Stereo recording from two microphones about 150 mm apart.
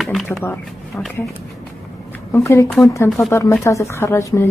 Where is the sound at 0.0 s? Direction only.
Centre (ahead or behind).